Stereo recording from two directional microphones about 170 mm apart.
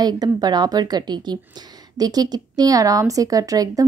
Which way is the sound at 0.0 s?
25° right (ahead or behind).